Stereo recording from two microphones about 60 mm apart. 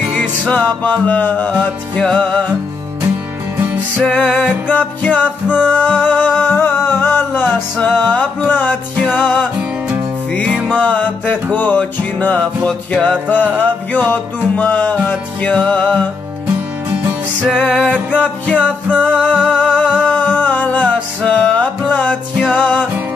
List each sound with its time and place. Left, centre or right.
0.2 s music: left
4.2 s music: left
9.6 s music: right
10.7 s music: left
17.5 s music: centre